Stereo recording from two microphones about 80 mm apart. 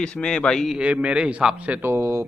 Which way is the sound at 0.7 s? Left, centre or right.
Centre.